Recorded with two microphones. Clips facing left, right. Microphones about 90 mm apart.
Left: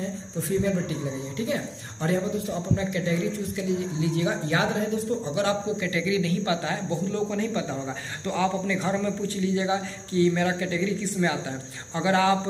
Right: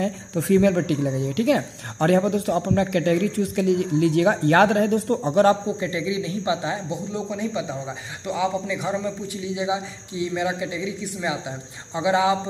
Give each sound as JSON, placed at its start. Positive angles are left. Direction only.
{"t": 0.0, "sound": "speech", "side_deg": -80}
{"t": 5.8, "sound": "a man's voice", "side_deg": -25}